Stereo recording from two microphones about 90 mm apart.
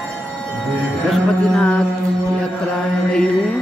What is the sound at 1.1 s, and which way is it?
Music, 10° left (ahead or behind).